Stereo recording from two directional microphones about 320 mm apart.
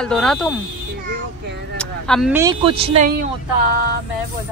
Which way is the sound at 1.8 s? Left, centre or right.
Centre.